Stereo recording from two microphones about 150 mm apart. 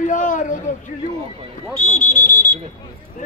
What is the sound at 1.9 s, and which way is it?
Speech, 60° left (ahead or behind).